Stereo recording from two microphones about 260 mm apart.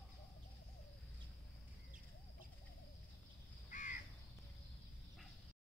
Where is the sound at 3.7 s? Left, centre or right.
Left.